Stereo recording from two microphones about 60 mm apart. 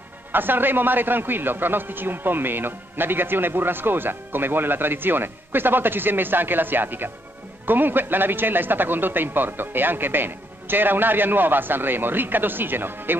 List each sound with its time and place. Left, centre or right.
0.3 s a man's voice: right